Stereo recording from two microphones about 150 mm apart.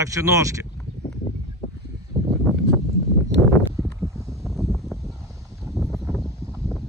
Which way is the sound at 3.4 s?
15° left (ahead or behind).